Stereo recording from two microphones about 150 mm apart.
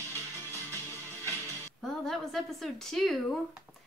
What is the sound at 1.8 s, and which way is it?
Speech, centre (ahead or behind).